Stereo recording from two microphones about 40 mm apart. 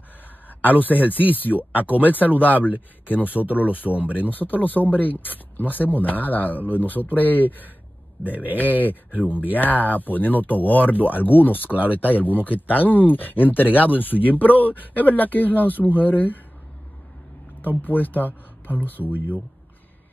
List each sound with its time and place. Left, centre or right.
0.7 s speech: left
17.8 s speech: left